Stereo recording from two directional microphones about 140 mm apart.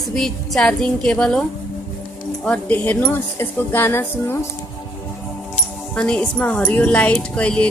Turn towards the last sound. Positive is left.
turn(degrees=10)  # may be behind; listen again after turning